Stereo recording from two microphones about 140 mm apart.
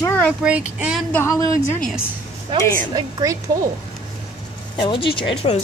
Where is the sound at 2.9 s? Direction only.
30° right (ahead or behind).